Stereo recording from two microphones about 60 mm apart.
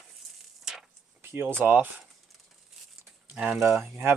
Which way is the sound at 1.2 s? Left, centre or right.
Right.